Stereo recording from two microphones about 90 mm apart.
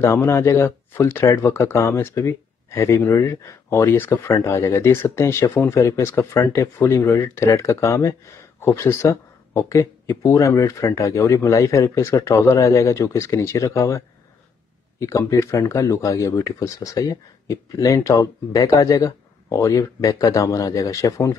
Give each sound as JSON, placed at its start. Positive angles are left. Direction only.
{"t": 0.0, "sound": "speech", "side_deg": 25}
{"t": 3.7, "sound": "speech", "side_deg": 25}